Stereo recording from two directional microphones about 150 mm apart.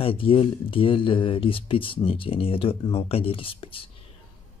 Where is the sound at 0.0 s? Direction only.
35° left (ahead or behind).